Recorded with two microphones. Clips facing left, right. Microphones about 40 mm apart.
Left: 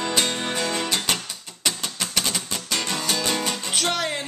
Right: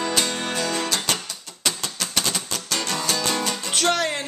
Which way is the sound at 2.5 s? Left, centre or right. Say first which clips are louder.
Even; left.